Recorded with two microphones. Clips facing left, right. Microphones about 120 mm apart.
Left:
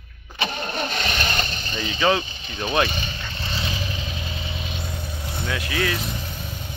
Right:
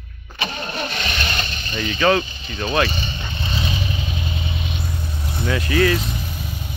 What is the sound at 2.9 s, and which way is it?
Speech, centre (ahead or behind).